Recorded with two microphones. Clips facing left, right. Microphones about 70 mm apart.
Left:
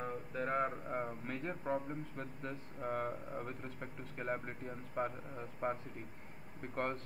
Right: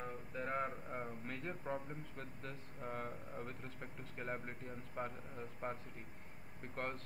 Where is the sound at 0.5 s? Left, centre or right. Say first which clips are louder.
Left 5 dB; left.